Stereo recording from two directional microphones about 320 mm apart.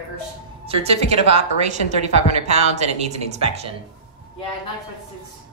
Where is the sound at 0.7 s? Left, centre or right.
Centre.